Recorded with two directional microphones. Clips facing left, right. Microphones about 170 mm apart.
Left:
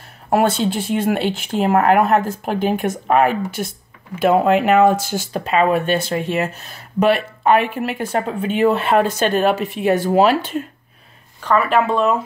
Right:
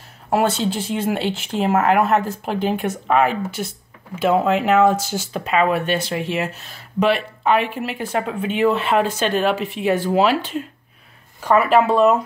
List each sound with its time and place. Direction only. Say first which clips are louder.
0.3 s speech: left 2 dB; 50° left (ahead or behind)
5.4 s speech: left 2 dB; 35° left (ahead or behind)
11.4 s speech: right 1 dB; 5° right (ahead or behind)